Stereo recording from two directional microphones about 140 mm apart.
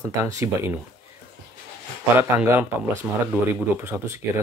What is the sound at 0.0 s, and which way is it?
Speech, 20° right (ahead or behind).